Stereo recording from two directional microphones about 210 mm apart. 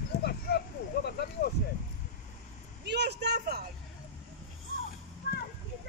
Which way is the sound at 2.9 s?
55° right (ahead or behind).